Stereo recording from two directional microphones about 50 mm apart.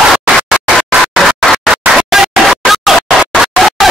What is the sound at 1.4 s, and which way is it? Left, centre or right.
Scratching, centre.